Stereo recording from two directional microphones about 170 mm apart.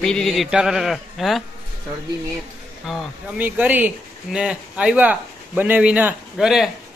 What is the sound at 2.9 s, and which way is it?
Speech, centre (ahead or behind).